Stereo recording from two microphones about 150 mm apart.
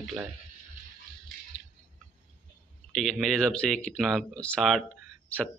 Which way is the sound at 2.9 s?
5° left (ahead or behind).